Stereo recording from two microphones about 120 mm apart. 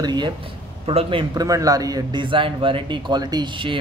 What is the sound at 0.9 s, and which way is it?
Speech, 50° right (ahead or behind).